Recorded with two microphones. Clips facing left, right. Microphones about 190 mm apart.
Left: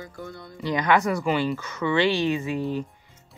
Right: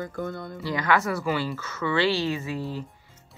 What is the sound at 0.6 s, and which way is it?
Speech, 20° left (ahead or behind).